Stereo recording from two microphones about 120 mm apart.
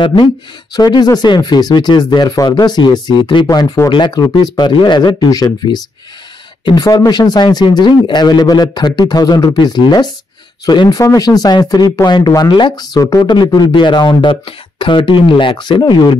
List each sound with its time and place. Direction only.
0.0 s speech: 45° left (ahead or behind)
0.7 s speech: 35° left (ahead or behind)